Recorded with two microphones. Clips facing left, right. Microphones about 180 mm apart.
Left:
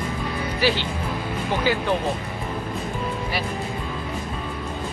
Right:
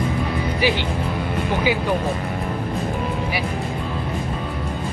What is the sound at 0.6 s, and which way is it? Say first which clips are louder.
Speech: even; 15° right (ahead or behind).